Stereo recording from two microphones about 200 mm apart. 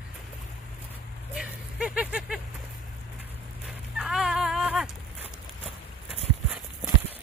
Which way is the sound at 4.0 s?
Centre (ahead or behind).